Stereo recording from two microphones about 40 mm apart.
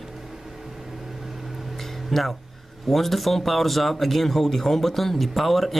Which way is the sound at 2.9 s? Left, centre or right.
Centre.